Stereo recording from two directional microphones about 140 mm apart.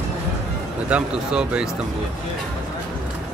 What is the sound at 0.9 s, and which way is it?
Speech, 10° right (ahead or behind).